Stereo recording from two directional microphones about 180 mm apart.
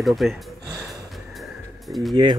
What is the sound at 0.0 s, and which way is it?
Speech, centre (ahead or behind).